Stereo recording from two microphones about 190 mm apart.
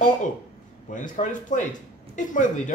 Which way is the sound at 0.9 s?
40° left (ahead or behind).